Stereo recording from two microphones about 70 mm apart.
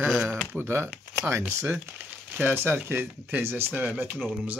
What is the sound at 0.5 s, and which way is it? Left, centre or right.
Speech, right.